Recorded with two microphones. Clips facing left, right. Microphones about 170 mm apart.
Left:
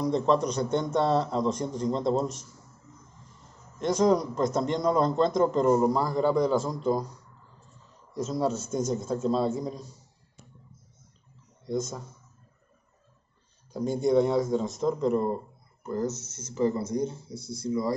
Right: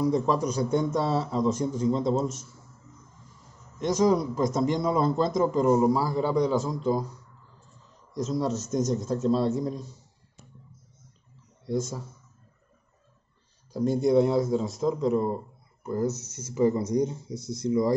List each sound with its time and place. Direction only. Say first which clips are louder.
0.0 s a man's voice: even; 5° right (ahead or behind)
3.8 s a man's voice: even; centre (ahead or behind)
8.1 s a man's voice: even; centre (ahead or behind)
11.6 s speech: right 1 dB; centre (ahead or behind)
13.7 s a man's voice: right 2 dB; centre (ahead or behind); by 17.9 s 20° right (ahead or behind)